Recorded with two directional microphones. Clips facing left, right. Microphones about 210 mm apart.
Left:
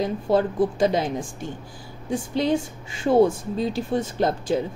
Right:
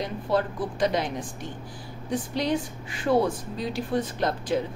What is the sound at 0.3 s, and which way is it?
Speech, 25° left (ahead or behind).